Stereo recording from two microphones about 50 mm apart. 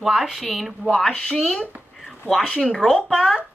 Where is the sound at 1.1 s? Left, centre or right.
Centre.